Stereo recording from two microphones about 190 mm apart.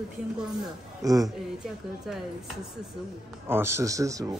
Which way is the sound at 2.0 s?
Centre (ahead or behind).